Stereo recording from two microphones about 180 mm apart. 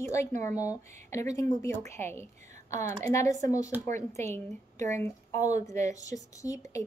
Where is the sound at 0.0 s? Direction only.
15° left (ahead or behind).